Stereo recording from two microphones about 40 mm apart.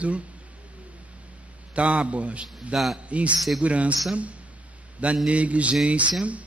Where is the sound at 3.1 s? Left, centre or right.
Right.